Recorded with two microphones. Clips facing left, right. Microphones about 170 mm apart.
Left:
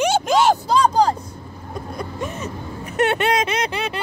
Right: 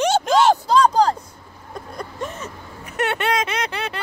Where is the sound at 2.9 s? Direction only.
20° left (ahead or behind).